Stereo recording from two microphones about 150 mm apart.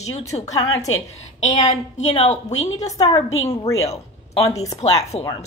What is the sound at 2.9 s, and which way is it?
Speech, 25° left (ahead or behind).